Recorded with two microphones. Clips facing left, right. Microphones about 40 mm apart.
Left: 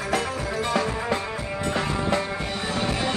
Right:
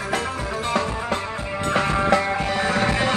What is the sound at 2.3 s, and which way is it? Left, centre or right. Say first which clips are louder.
Music: right 6 dB; right.